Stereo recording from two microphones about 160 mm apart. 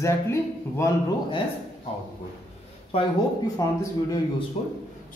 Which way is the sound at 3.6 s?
20° left (ahead or behind).